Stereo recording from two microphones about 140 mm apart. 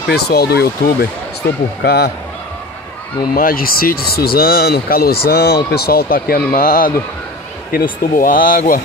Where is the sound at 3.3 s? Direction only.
90° left.